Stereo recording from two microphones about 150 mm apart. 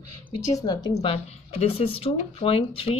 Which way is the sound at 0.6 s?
25° left (ahead or behind).